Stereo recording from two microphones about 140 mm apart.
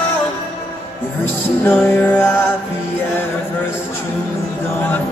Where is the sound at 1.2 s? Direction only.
15° left (ahead or behind).